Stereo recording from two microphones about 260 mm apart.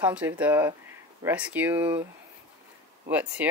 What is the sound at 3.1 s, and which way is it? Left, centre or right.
Speech, centre.